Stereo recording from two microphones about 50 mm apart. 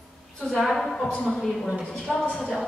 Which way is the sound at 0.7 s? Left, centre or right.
Centre.